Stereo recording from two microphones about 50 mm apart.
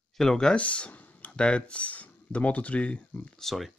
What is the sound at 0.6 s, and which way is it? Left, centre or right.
Speech, left.